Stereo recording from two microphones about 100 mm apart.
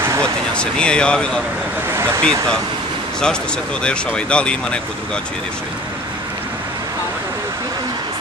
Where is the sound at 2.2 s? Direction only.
10° left (ahead or behind).